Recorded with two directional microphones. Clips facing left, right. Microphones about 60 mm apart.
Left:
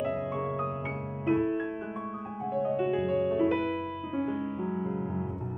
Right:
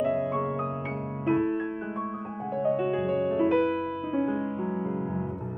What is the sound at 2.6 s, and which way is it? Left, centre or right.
Music, centre.